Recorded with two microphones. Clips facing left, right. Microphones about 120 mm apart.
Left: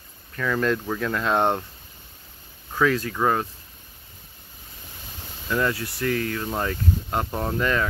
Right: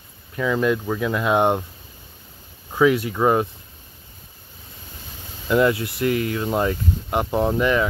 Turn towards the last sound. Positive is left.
turn(degrees=-15)  # may be behind; listen again after turning